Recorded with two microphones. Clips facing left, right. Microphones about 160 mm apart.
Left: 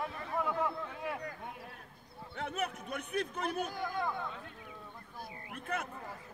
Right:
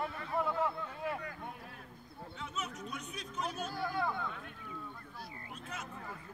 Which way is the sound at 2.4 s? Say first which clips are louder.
Left 6 dB; 60° left (ahead or behind).